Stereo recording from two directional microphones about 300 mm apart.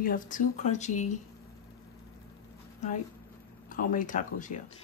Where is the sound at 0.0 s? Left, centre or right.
Left.